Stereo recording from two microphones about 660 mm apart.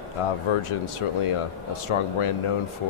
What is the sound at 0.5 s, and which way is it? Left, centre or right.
Speech, left.